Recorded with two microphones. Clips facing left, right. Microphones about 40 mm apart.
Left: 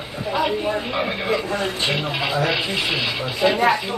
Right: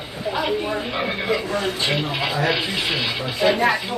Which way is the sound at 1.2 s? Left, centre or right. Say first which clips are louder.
Even; left.